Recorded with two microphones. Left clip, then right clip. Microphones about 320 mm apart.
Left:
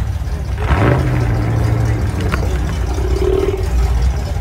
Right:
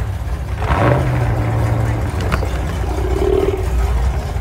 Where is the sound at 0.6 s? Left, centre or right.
Centre.